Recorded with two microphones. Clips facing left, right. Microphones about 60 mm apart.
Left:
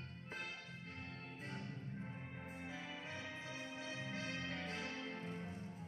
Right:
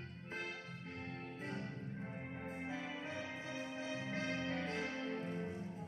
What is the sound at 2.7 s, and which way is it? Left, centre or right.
Music, right.